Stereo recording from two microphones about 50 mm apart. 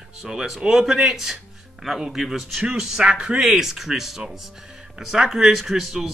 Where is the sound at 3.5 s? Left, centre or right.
Centre.